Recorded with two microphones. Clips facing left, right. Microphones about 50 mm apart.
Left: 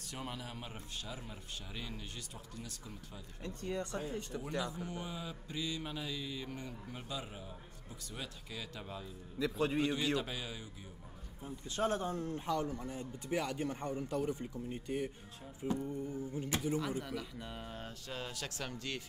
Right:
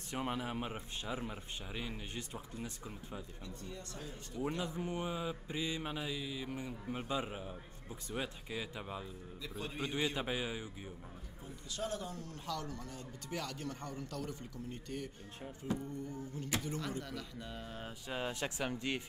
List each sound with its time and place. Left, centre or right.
0.1 s a man's voice: right
3.4 s speech: left
3.8 s speech: left
4.3 s speech: left
4.7 s a man's voice: right
6.9 s a man's voice: right
9.4 s a man's voice: left
9.9 s a man's voice: right
11.4 s speech: left; by 17.7 s centre
18.0 s a man's voice: right